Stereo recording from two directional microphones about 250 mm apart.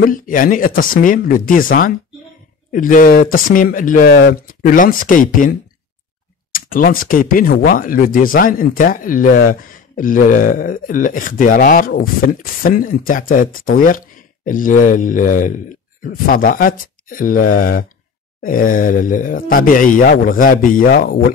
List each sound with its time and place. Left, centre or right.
0.0 s speech: left